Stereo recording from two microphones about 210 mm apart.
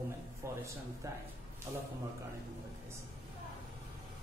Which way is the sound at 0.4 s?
15° right (ahead or behind).